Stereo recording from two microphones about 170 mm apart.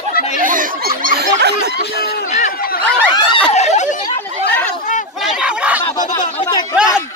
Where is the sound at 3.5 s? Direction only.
40° left (ahead or behind).